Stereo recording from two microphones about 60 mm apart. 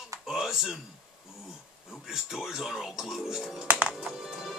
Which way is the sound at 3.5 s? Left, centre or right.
Right.